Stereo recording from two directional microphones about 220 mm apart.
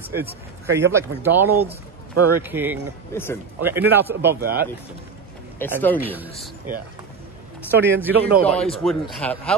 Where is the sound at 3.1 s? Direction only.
10° left (ahead or behind).